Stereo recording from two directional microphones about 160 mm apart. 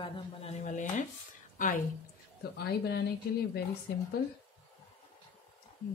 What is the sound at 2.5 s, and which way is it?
Speech, 90° left.